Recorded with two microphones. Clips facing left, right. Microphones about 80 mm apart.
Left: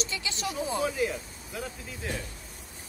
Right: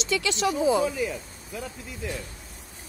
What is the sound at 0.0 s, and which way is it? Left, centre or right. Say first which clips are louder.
Speech: right 8 dB; right.